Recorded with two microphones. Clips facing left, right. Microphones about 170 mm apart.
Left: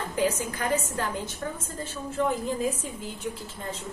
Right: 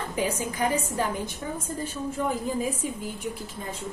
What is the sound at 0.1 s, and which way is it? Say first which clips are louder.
A woman's voice: left 2 dB; 15° right (ahead or behind).